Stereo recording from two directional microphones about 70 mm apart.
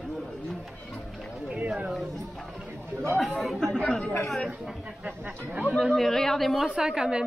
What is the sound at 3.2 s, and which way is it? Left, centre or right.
Speech, centre.